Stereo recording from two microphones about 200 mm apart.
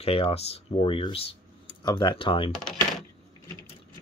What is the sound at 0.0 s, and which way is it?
Speech, 30° left (ahead or behind).